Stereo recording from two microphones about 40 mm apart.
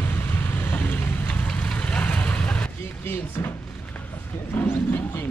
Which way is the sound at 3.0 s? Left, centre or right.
Left.